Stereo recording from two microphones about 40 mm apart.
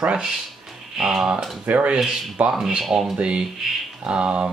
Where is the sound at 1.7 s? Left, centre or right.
Right.